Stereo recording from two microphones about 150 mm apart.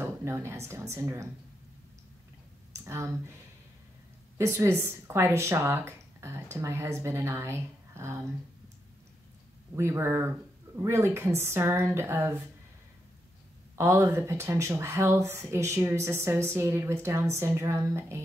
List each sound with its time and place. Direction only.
0.0 s speech: 15° right (ahead or behind)
2.7 s speech: 20° right (ahead or behind)
4.4 s speech: 20° right (ahead or behind)
9.8 s speech: 20° right (ahead or behind)
13.7 s speech: 15° right (ahead or behind)